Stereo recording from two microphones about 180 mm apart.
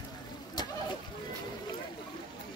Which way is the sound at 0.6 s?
20° left (ahead or behind).